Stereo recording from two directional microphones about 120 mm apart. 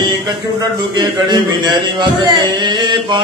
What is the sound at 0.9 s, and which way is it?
A man's voice, 40° right (ahead or behind).